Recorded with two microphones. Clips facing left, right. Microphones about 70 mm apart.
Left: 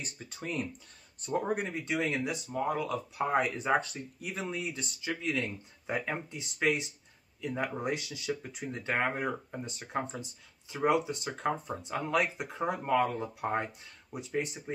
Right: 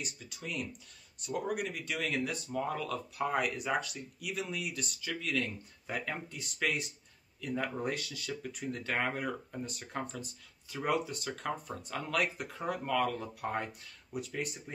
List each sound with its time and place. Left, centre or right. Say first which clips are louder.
0.0 s speech: left 2 dB; left